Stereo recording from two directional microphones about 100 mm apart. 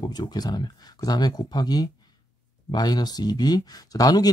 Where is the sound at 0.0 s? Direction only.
45° left (ahead or behind).